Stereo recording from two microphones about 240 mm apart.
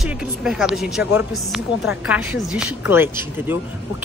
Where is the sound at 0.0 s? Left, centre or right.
Centre.